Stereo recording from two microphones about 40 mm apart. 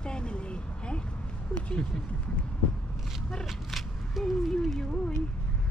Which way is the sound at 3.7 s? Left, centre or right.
Centre.